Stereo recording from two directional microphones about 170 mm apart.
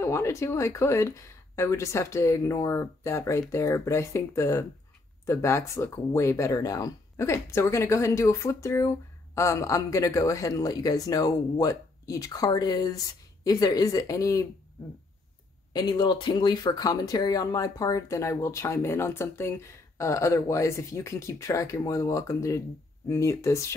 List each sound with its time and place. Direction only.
0.0 s speech: 15° left (ahead or behind)
15.7 s speech: 25° left (ahead or behind)